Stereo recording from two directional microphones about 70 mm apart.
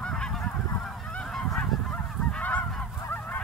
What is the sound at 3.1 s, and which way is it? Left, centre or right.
Goose, left.